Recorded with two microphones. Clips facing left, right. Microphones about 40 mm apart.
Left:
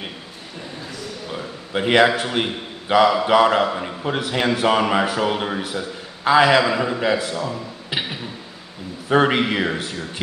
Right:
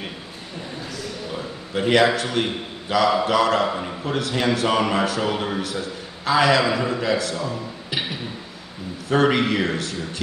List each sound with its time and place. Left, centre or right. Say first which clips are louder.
1.7 s a man's voice: left 2 dB; left
3.6 s a man's voice: left 1 dB; centre
7.9 s a sound: left 1 dB; centre
9.1 s a man's voice: left 1 dB; centre